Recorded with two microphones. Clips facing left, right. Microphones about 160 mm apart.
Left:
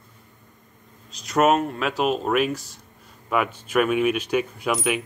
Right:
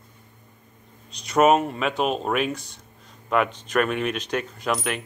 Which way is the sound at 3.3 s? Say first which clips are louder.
Right 1 dB; 5° left (ahead or behind).